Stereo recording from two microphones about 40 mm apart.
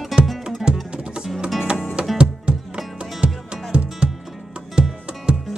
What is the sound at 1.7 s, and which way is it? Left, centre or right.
Music, right.